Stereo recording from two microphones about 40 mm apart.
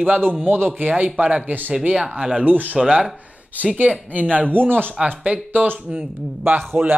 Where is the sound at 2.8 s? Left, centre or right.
Right.